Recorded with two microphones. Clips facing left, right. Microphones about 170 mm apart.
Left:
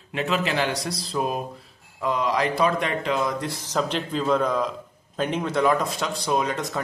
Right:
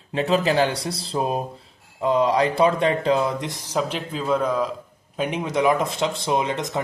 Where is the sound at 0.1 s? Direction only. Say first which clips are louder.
Right 5 dB; 35° right (ahead or behind).